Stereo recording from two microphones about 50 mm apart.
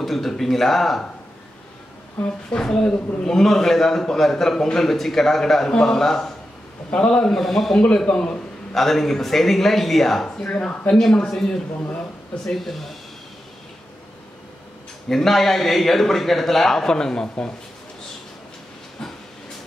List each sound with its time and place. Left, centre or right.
0.0 s a man's voice: centre
2.2 s a woman's voice: left
6.9 s a man's voice: left; by 7.8 s centre
7.8 s a man's voice: centre
12.4 s a man's voice: centre
15.0 s a man's voice: centre